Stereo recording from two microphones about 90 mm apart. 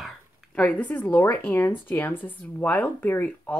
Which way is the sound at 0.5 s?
15° left (ahead or behind).